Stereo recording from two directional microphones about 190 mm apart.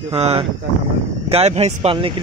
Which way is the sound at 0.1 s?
30° right (ahead or behind).